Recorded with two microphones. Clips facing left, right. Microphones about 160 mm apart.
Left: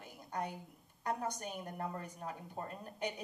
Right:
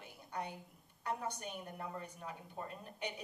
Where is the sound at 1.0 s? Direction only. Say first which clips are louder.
Left 2 dB; 40° left (ahead or behind).